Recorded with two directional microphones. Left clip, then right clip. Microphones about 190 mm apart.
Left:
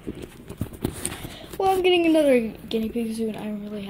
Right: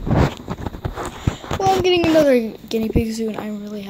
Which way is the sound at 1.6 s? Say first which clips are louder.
Right 3 dB; 15° right (ahead or behind).